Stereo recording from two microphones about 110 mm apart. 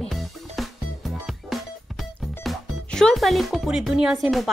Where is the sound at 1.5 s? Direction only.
Centre (ahead or behind).